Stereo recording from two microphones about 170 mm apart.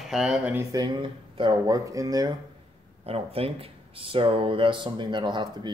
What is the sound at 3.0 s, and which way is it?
Speech, 35° right (ahead or behind).